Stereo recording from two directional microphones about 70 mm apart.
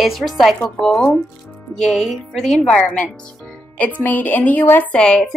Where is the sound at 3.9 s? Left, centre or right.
Left.